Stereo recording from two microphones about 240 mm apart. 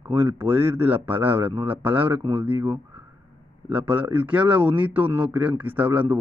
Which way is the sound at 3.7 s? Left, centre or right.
Right.